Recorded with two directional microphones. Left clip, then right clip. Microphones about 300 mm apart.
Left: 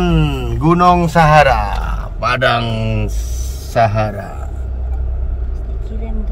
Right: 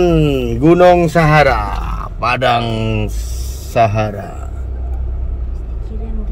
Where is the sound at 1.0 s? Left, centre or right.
Left.